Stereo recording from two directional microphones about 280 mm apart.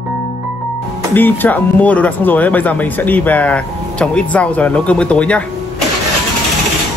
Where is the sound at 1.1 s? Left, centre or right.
Centre.